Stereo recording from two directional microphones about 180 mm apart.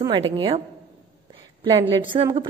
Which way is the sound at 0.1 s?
25° right (ahead or behind).